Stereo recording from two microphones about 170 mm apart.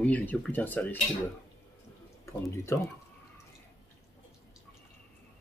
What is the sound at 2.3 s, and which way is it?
Speech, 15° left (ahead or behind).